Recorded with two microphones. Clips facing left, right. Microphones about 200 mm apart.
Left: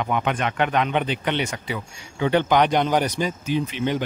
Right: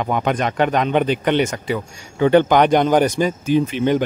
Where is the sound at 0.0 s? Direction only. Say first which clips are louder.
Right 4 dB; 40° right (ahead or behind).